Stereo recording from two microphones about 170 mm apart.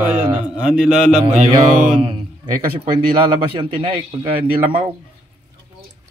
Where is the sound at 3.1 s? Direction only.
30° right (ahead or behind).